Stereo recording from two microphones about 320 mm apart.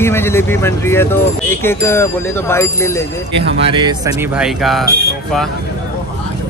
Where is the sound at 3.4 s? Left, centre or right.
Centre.